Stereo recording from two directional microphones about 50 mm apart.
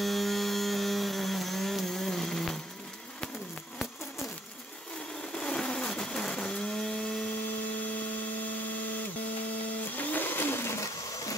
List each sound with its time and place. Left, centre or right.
0.0 s a sound: centre
5.3 s vehicle: centre
9.9 s blender: left